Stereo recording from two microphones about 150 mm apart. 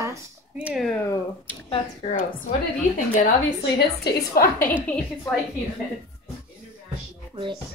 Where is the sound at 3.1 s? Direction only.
60° left (ahead or behind); by 4.7 s 85° left.